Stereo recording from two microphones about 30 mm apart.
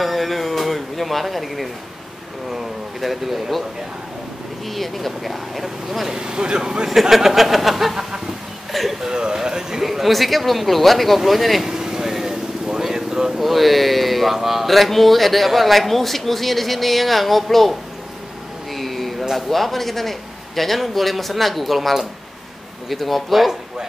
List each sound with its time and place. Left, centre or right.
0.0 s speech: centre
4.6 s speech: centre
6.1 s speech: right
7.0 s speech: centre
9.0 s speech: right
9.8 s speech: centre
11.6 s vehicle: centre
12.9 s vehicle: right
13.4 s speech: centre
18.7 s a sound: centre
19.3 s speech: centre